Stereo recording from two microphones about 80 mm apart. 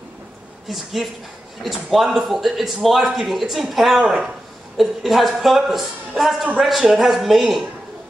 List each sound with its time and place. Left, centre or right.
1.6 s speech: centre